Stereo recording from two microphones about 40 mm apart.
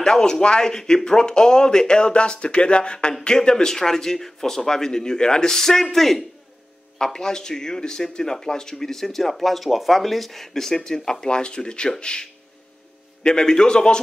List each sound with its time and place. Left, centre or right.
0.0 s speech: centre